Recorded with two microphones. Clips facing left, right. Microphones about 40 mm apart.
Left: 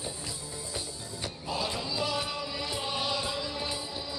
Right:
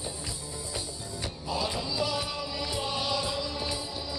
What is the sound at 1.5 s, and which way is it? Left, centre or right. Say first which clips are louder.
Music: right 1 dB; centre.